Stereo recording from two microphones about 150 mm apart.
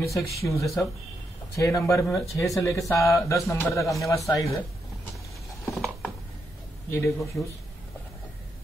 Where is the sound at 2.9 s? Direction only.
20° left (ahead or behind).